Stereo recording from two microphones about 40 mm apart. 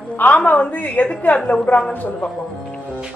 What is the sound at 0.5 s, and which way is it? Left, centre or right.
A woman's voice, left.